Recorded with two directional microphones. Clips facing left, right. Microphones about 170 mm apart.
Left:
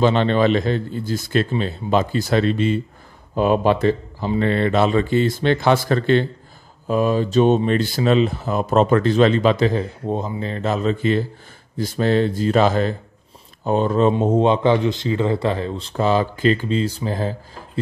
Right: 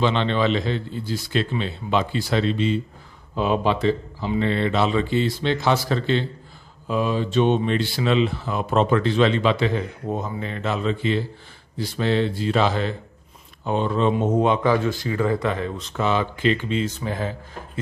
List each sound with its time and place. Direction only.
0.0 s a man's voice: 45° left (ahead or behind)
14.1 s a man's voice: 30° left (ahead or behind)